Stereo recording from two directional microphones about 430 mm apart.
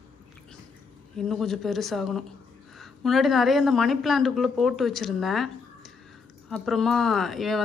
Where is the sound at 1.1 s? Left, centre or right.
Centre.